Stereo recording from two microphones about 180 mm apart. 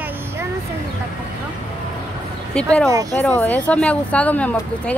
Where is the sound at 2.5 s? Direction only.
5° left (ahead or behind).